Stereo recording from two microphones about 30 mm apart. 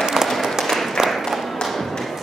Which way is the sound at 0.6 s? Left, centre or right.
Centre.